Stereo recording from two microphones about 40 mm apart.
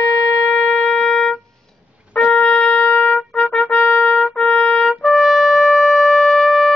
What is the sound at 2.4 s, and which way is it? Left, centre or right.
Shofar, left.